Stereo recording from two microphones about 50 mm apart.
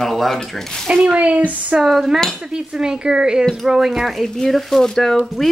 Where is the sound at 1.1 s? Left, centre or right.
Right.